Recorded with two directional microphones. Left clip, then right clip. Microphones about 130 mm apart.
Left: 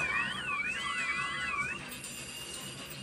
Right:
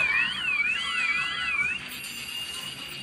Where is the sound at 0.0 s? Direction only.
40° left (ahead or behind).